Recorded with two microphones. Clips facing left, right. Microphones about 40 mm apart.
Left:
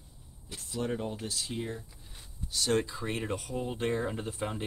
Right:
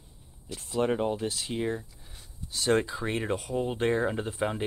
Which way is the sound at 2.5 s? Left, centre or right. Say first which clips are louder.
Right 4 dB; right.